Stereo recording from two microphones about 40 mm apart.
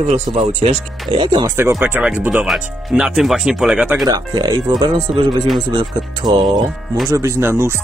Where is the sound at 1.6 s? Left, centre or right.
Right.